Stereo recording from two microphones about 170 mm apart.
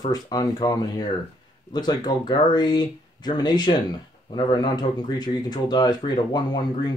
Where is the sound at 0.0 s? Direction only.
25° left (ahead or behind).